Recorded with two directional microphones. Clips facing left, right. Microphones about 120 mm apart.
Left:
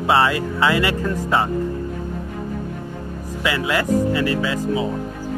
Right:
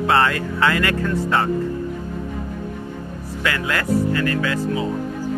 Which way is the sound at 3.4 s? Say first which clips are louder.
Left 2 dB; 20° left (ahead or behind).